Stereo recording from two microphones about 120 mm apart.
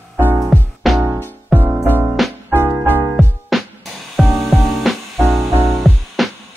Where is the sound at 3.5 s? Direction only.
Centre (ahead or behind).